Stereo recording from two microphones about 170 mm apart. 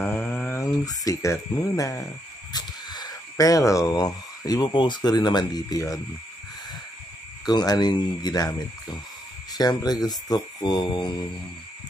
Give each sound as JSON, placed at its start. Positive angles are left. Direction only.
{"t": 0.0, "sound": "a sound", "side_deg": 10}
{"t": 2.5, "sound": "speech", "side_deg": 25}
{"t": 7.4, "sound": "speech", "side_deg": 25}